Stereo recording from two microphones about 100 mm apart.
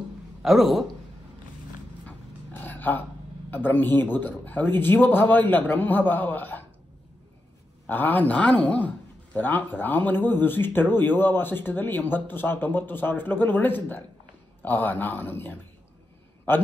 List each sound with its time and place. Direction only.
0.4 s a man's voice: centre (ahead or behind)
2.0 s dog: 15° left (ahead or behind)
3.4 s a man's voice: 20° left (ahead or behind)
7.8 s a man's voice: 15° left (ahead or behind)